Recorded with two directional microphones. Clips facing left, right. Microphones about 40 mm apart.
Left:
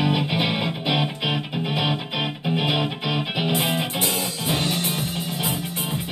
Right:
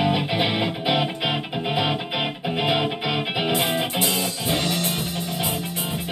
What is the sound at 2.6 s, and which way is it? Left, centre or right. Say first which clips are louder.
Music: right 1 dB; centre.